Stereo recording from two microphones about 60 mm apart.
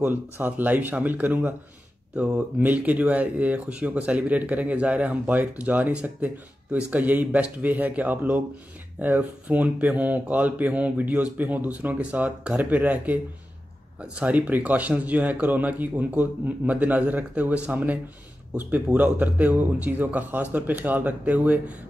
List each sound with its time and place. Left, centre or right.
0.0 s speech: right
2.1 s speech: centre
18.9 s speech: right